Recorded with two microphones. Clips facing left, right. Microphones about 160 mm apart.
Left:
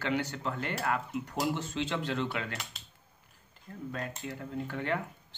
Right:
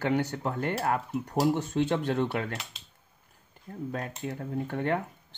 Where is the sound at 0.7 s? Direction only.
40° right (ahead or behind).